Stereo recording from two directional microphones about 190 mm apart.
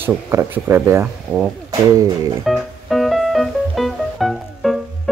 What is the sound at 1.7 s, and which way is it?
Speech, 20° right (ahead or behind).